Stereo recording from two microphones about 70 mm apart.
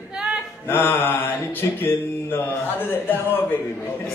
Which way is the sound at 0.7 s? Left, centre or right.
Left.